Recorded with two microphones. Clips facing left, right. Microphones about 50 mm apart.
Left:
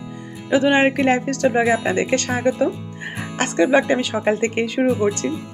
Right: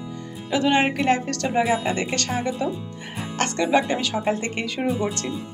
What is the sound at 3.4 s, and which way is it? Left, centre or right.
A woman's voice, left.